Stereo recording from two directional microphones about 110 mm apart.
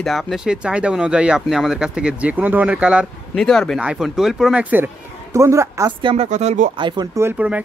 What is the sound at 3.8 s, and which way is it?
Speech, 5° right (ahead or behind).